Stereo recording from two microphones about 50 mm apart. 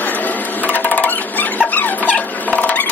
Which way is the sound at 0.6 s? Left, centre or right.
Left.